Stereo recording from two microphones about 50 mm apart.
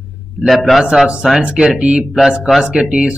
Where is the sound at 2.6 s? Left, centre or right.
Centre.